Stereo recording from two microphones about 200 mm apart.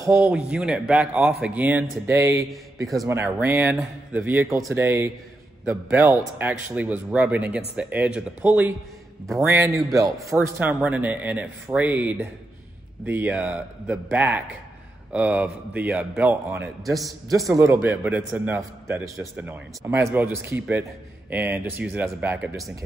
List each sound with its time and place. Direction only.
0.0 s a man's voice: 10° right (ahead or behind)